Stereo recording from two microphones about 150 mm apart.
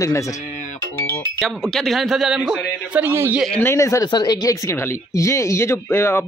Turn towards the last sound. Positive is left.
turn(degrees=15)  # may be behind; listen again after turning